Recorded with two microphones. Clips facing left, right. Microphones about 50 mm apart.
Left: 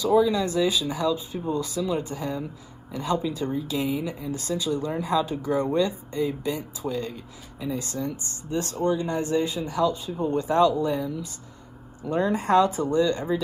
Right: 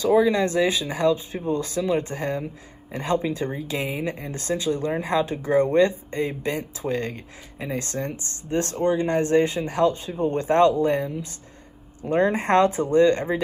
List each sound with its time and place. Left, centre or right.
0.0 s speech: right